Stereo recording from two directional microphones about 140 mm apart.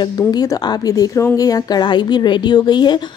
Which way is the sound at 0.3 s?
30° left (ahead or behind).